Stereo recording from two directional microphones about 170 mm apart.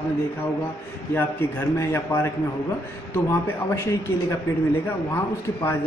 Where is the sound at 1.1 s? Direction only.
15° left (ahead or behind).